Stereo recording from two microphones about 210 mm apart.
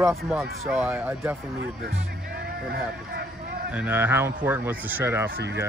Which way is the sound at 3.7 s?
10° right (ahead or behind).